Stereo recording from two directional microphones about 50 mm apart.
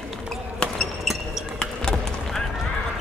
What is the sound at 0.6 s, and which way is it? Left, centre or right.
Basketball bounce, centre.